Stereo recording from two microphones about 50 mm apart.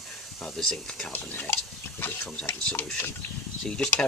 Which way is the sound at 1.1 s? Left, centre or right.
Left.